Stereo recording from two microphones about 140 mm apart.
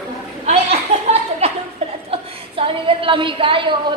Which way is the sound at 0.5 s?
50° right (ahead or behind).